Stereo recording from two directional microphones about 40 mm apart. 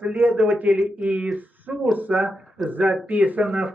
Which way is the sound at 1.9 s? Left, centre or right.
Right.